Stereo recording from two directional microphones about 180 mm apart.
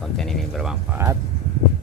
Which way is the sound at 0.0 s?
Centre (ahead or behind).